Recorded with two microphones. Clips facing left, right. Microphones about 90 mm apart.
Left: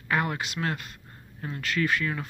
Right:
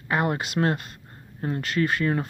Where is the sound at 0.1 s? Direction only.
30° right (ahead or behind).